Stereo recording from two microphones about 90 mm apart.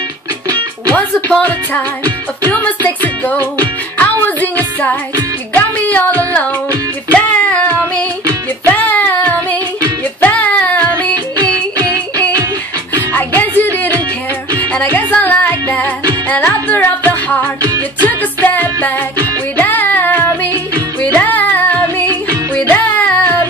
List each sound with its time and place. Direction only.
0.9 s speech: 20° left (ahead or behind)
2.5 s music: 20° left (ahead or behind)
5.5 s a sound: 20° left (ahead or behind)
8.6 s child singing: 20° left (ahead or behind)
10.3 s music: 15° left (ahead or behind)
11.3 s music: 40° right (ahead or behind)
13.4 s music: 20° left (ahead or behind)
17.6 s music: 45° right (ahead or behind)
18.0 s music: 20° left (ahead or behind)
21.0 s female singing: 20° left (ahead or behind)
22.3 s music: 20° left (ahead or behind)